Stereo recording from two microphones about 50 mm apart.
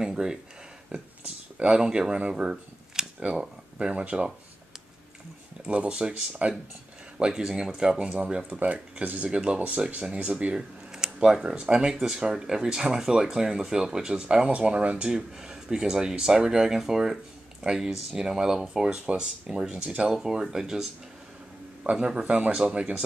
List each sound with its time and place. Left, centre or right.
0.0 s speech: centre
5.7 s speech: right
5.9 s speech: centre
20.1 s speech: centre; by 23.0 s right